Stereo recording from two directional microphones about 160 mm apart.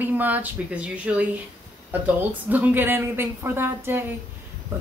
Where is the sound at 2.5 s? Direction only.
10° right (ahead or behind).